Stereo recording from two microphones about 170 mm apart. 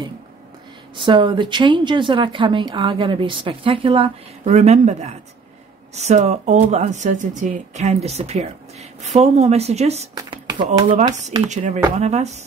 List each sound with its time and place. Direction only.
0.9 s a woman's voice: 25° right (ahead or behind)
11.4 s speech: 45° right (ahead or behind)